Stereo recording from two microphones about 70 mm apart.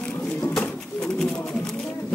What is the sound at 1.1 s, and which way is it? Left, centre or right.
Pigeon, centre.